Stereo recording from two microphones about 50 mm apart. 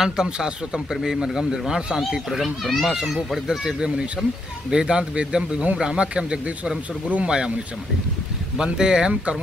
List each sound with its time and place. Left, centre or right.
0.0 s a man's voice: centre
2.0 s a child's voice: centre
3.4 s a man's voice: centre
8.5 s a man's voice: centre